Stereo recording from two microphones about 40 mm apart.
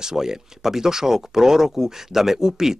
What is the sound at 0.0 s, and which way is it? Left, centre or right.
Speech, centre.